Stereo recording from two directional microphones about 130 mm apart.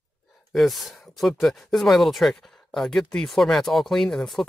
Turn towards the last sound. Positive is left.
turn(degrees=0)  # may be behind; listen again after turning